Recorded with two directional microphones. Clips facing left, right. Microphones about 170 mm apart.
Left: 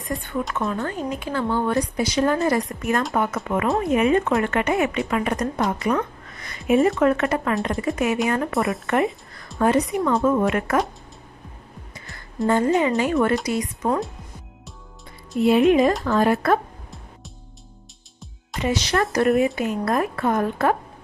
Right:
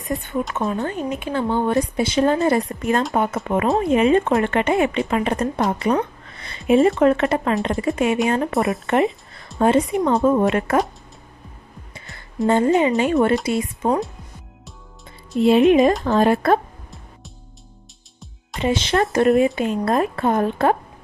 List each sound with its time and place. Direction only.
0.6 s speech: 20° right (ahead or behind)
5.7 s a sound: 30° right (ahead or behind)
6.7 s speech: 25° right (ahead or behind)
12.4 s speech: 20° right (ahead or behind)
15.3 s speech: 25° right (ahead or behind)
18.6 s speech: 25° right (ahead or behind)